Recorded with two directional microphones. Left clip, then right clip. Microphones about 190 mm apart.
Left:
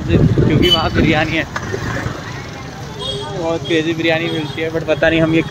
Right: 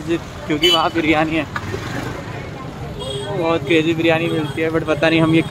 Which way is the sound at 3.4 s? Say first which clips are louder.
Right 1 dB; 15° right (ahead or behind).